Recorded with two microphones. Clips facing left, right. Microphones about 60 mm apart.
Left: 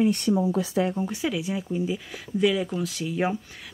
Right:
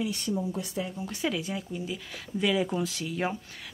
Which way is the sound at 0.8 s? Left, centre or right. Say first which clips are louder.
Left 10 dB; left.